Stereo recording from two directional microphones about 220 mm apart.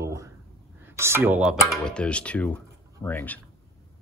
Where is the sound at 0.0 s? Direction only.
15° right (ahead or behind).